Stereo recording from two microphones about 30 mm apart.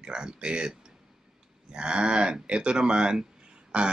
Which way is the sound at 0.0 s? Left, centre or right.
Right.